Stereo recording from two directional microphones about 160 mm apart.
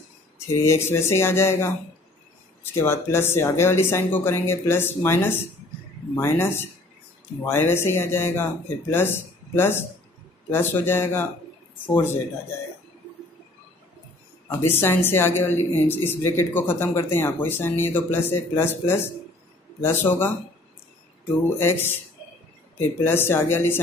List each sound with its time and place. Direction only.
0.5 s speech: 15° left (ahead or behind)
14.6 s speech: 15° left (ahead or behind)
21.5 s speech: 15° left (ahead or behind)